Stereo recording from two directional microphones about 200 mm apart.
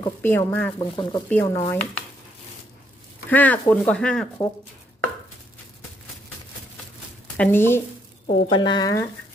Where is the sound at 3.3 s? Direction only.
10° left (ahead or behind).